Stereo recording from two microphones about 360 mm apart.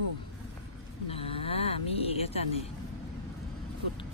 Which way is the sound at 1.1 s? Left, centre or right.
Centre.